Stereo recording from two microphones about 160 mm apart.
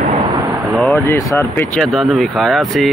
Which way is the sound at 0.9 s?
15° left (ahead or behind).